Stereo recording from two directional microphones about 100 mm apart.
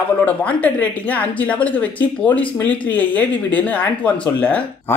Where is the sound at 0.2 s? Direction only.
15° left (ahead or behind).